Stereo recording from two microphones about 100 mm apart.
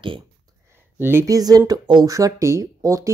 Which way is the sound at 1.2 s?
40° right (ahead or behind).